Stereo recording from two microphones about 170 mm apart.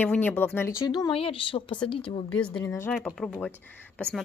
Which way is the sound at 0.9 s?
30° left (ahead or behind).